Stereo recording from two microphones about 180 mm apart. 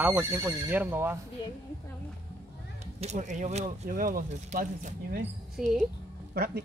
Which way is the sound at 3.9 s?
50° right (ahead or behind).